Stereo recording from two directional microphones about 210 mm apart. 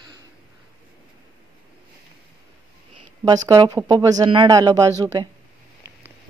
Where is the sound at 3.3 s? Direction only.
20° right (ahead or behind).